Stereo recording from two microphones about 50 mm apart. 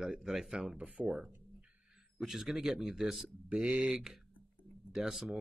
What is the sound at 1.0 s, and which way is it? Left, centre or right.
Speech, centre.